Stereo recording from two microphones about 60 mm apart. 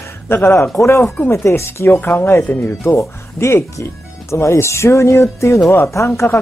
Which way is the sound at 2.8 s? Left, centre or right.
Left.